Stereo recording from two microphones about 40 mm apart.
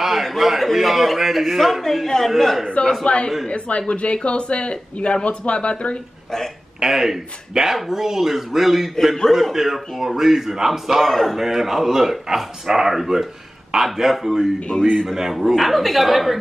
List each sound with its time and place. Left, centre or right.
0.0 s a man's voice: centre
3.1 s speech: left
6.8 s speech: centre
11.0 s a man's voice: centre
11.4 s speech: centre
14.7 s a man's voice: centre
15.0 s a man's voice: centre